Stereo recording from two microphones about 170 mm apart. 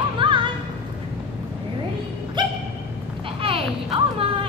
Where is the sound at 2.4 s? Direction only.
25° right (ahead or behind).